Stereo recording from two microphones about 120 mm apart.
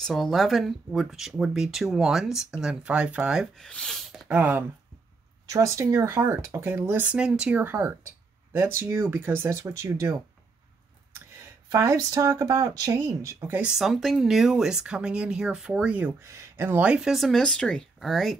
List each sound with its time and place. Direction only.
0.0 s speech: centre (ahead or behind)
4.3 s speech: 15° right (ahead or behind)
11.7 s speech: 25° right (ahead or behind)
13.6 s speech: 5° right (ahead or behind)